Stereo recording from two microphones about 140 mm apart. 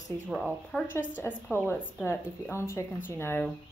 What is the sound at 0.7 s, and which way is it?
A woman's voice, 15° left (ahead or behind).